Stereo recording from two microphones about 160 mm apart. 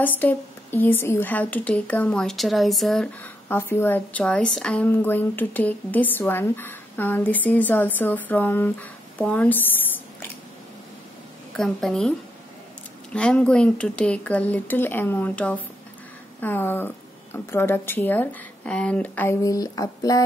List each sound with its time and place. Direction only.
0.0 s a woman's voice: 10° left (ahead or behind)
3.4 s a woman's voice: 15° left (ahead or behind)
11.5 s a woman's voice: 5° left (ahead or behind)
13.1 s a woman's voice: 5° left (ahead or behind)
19.4 s speech: 20° left (ahead or behind)